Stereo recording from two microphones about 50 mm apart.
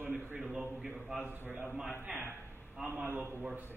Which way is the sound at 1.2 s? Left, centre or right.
Right.